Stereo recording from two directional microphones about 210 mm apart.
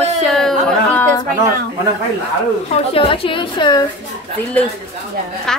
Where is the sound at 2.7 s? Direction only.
25° left (ahead or behind).